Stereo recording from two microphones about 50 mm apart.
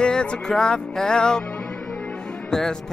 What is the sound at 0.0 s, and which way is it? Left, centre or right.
Speech, centre.